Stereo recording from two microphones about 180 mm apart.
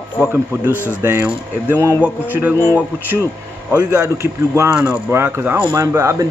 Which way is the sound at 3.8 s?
15° right (ahead or behind).